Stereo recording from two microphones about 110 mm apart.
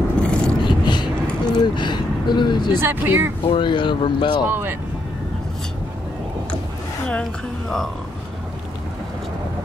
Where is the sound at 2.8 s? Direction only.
20° right (ahead or behind).